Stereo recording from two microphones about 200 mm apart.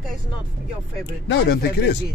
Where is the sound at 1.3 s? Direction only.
60° left (ahead or behind).